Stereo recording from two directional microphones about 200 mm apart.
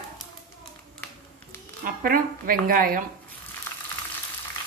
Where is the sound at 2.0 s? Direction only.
45° right (ahead or behind).